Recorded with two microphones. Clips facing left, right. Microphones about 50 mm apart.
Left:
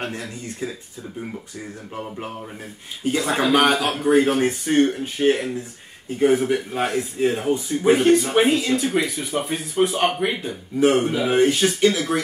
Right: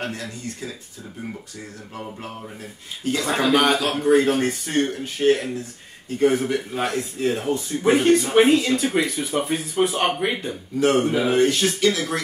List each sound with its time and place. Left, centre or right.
0.0 s speech: left
3.0 s speech: centre
7.8 s speech: centre
10.8 s speech: centre